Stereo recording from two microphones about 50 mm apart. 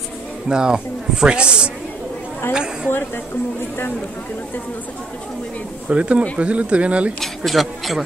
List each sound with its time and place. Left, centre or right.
0.5 s speech: centre
5.9 s speech: right
7.2 s speech: centre